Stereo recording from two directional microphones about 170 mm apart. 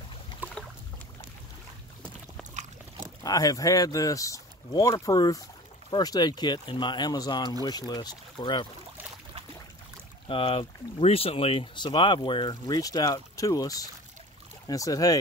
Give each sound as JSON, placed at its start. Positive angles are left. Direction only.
{"t": 0.4, "sound": "boat", "side_deg": -10}
{"t": 3.3, "sound": "speech", "side_deg": 20}
{"t": 10.2, "sound": "speech", "side_deg": 30}